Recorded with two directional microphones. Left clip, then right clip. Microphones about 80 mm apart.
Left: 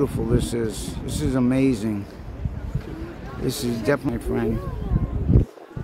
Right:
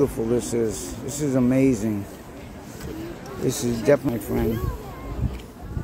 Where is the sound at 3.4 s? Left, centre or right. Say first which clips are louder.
Right 2 dB; centre.